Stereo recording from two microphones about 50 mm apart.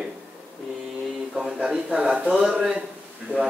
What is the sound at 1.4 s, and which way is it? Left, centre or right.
Speech, centre.